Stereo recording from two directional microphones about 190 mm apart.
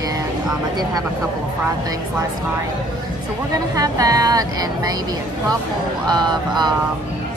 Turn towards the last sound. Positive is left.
turn(degrees=-20)  # may be behind; listen again after turning